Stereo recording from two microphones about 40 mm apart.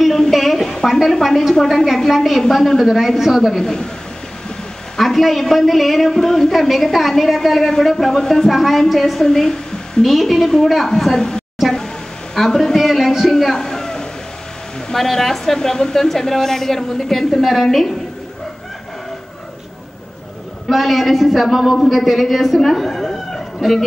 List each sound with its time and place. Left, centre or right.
0.0 s a sound: centre
0.8 s a woman's voice: centre
2.0 s a woman's voice: centre
2.6 s a woman's voice: centre
3.6 s a woman's voice: centre
4.9 s a woman's voice: centre
8.5 s a woman's voice: centre
10.0 s a woman's voice: centre
12.7 s music: centre
13.3 s a sound: centre
14.9 s a woman's voice: centre
20.7 s a woman's voice: centre
22.6 s chicken: centre